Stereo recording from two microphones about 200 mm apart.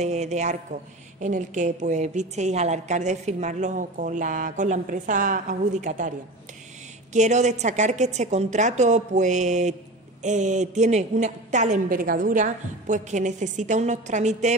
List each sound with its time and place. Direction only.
0.0 s a woman's voice: 35° right (ahead or behind)